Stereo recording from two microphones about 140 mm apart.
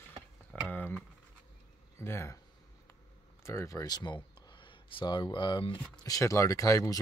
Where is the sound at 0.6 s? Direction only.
10° left (ahead or behind).